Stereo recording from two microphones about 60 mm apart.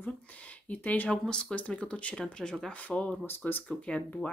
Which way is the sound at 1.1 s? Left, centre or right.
Centre.